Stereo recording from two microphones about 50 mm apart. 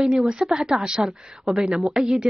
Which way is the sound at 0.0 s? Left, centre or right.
Centre.